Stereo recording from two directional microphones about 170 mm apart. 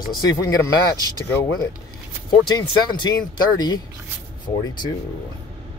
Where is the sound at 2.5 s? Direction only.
25° left (ahead or behind).